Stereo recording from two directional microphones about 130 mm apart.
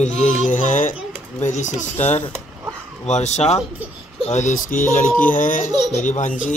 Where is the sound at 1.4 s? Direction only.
65° left (ahead or behind); by 5.7 s 90° left.